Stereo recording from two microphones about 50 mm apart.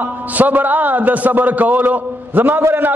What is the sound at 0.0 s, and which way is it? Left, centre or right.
A man's voice, right.